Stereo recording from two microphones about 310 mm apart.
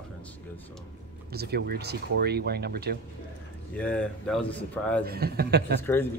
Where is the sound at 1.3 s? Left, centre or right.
Right.